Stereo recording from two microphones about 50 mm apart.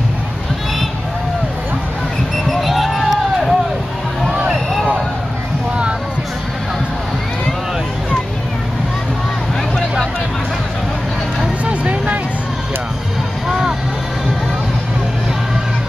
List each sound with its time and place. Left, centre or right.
2.3 s a sound: centre
11.6 s music: right
13.5 s music: centre